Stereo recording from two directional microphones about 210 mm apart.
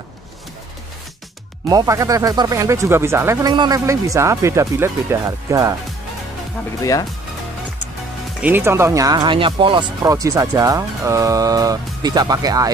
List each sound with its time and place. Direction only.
1.7 s speech: 15° right (ahead or behind)
6.8 s speech: 15° left (ahead or behind)
8.4 s speech: 10° right (ahead or behind)